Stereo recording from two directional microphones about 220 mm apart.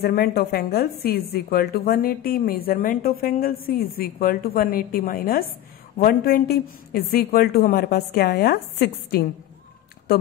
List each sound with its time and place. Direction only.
0.0 s a woman's voice: 45° left (ahead or behind)